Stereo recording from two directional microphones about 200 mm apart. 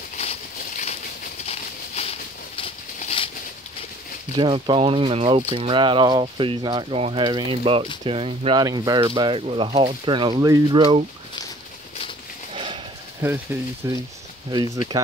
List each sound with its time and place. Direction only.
0.2 s a sound: 35° left (ahead or behind)
4.4 s speech: 25° right (ahead or behind)
12.5 s horse: 25° right (ahead or behind)
13.2 s speech: 10° right (ahead or behind)